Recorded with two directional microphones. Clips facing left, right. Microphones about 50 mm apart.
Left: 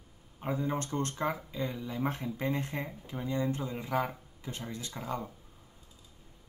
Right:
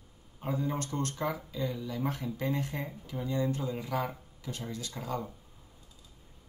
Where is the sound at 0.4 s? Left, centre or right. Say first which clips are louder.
Even; left.